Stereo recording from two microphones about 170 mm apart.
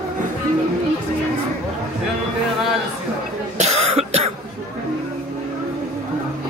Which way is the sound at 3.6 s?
40° right (ahead or behind).